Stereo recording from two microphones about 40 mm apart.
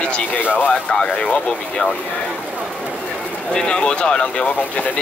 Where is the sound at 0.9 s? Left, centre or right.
Left.